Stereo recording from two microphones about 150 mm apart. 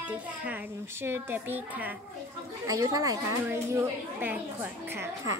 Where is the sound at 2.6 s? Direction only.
25° right (ahead or behind).